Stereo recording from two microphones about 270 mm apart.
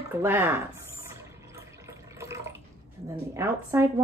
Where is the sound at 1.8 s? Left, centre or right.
Centre.